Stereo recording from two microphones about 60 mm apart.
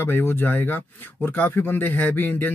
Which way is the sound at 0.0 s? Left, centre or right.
Left.